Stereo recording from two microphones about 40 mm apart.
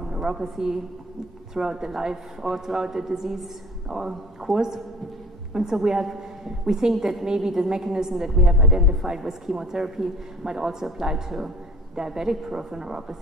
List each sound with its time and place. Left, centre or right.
0.0 s a woman's voice: centre
5.5 s a woman's voice: centre